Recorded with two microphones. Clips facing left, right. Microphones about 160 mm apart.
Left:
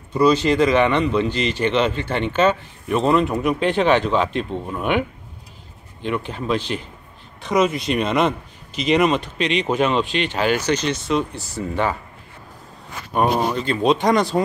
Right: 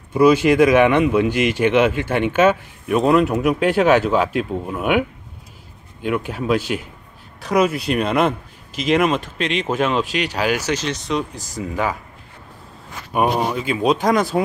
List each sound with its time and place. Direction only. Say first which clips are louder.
0.1 s speech: right 3 dB; 10° right (ahead or behind)
6.0 s speech: right 3 dB; 5° right (ahead or behind)
13.1 s speech: even; 10° right (ahead or behind)